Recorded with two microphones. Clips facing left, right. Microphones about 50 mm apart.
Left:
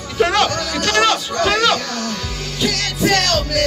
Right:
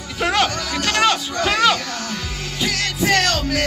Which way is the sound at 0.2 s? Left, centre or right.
Centre.